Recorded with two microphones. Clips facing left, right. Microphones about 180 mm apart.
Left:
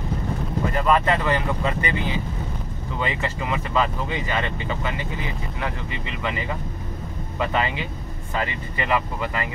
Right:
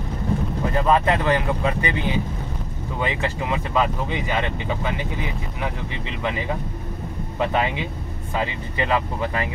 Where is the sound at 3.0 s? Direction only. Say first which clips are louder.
Right 2 dB; 20° right (ahead or behind).